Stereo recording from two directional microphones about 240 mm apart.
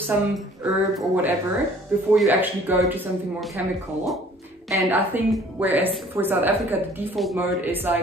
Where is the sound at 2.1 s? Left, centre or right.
Centre.